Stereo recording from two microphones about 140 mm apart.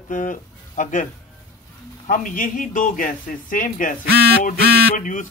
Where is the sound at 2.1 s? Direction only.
70° left (ahead or behind).